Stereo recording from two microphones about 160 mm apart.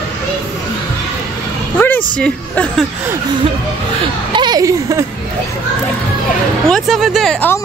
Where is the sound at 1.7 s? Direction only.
10° left (ahead or behind).